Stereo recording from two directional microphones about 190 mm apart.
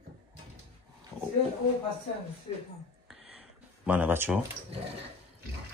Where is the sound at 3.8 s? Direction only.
10° right (ahead or behind).